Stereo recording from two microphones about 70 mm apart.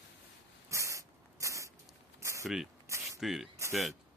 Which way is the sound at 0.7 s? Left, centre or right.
Right.